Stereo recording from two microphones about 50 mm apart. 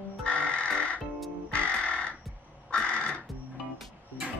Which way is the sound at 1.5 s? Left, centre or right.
Left.